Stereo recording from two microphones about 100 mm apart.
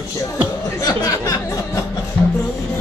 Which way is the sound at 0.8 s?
40° left (ahead or behind).